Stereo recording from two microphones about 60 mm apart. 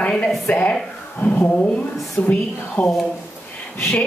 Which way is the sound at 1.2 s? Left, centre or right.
Left.